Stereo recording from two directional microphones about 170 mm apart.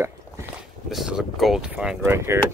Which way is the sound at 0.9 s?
Centre (ahead or behind).